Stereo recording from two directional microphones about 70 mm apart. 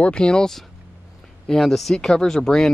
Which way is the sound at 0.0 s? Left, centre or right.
Centre.